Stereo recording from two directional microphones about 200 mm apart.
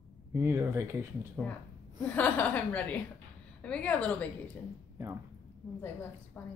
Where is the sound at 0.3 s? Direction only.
15° right (ahead or behind).